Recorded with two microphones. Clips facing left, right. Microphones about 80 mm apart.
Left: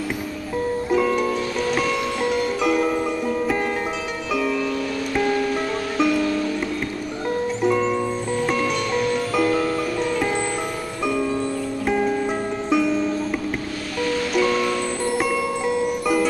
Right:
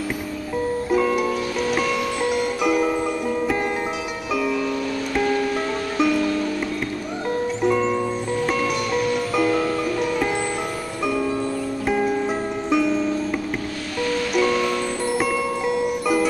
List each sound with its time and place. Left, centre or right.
0.8 s music: centre
5.9 s music: centre
7.2 s music: centre
11.8 s music: centre
14.3 s music: centre